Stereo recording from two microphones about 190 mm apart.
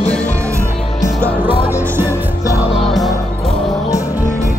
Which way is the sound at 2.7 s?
Centre (ahead or behind).